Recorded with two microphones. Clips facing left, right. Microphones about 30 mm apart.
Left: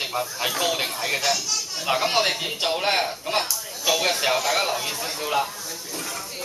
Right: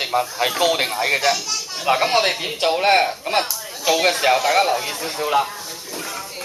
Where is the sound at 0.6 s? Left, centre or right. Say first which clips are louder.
Right 6 dB; right.